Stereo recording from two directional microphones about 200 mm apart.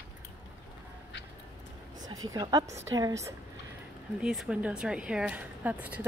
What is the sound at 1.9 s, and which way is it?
A woman's voice, 20° right (ahead or behind).